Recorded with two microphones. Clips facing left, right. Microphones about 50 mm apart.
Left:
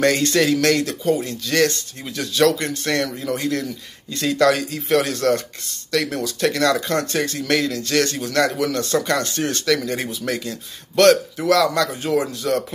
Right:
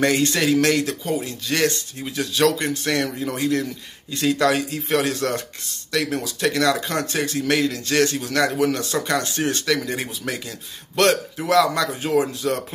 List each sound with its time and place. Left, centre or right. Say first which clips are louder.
0.0 s speech: left 2 dB; centre
8.3 s speech: left 1 dB; centre
8.5 s speech: left 1 dB; right